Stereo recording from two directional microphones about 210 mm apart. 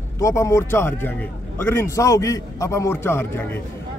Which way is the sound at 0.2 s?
15° left (ahead or behind).